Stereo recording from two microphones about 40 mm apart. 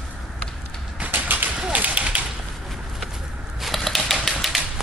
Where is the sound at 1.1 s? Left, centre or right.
Right.